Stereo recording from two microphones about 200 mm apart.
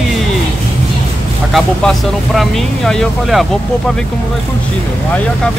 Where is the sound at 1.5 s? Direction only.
Centre (ahead or behind).